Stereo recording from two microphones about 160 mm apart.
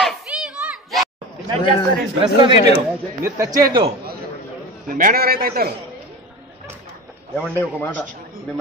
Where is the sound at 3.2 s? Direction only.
20° right (ahead or behind).